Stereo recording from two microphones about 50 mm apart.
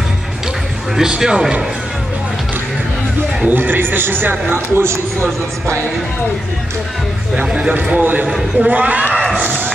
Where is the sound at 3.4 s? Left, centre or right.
Right.